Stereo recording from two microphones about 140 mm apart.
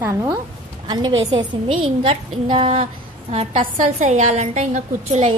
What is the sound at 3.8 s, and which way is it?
A woman's voice, 60° right (ahead or behind).